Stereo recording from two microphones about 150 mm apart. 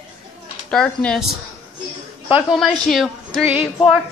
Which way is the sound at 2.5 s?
Centre (ahead or behind).